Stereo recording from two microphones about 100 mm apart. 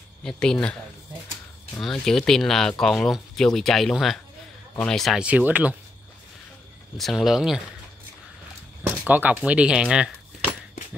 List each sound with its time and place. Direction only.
0.2 s speech: 5° left (ahead or behind)
1.8 s speech: 5° left (ahead or behind)
5.2 s speech: 15° right (ahead or behind)
7.0 s speech: centre (ahead or behind)
9.0 s speech: 15° right (ahead or behind)